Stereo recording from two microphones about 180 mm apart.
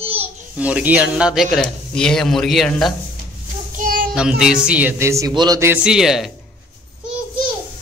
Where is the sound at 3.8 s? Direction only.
50° right (ahead or behind).